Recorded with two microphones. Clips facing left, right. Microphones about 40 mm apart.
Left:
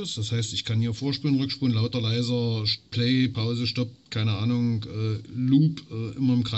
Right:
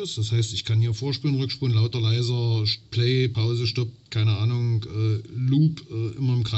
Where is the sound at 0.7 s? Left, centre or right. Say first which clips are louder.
Left 3 dB; centre.